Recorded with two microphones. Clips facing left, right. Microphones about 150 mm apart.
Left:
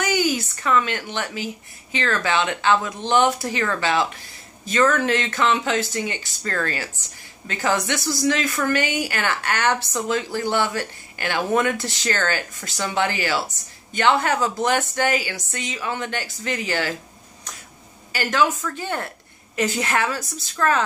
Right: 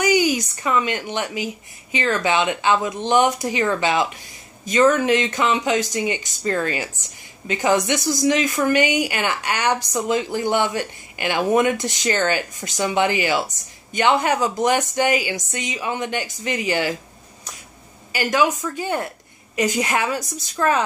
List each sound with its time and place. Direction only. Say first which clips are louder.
0.0 s a woman's voice: right 4 dB; 10° right (ahead or behind)
18.1 s a woman's voice: right 2 dB; 10° right (ahead or behind)